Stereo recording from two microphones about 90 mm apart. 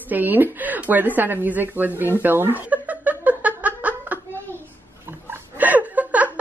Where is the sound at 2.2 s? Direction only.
20° right (ahead or behind).